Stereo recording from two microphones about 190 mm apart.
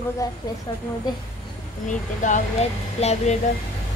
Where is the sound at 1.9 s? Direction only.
40° left (ahead or behind).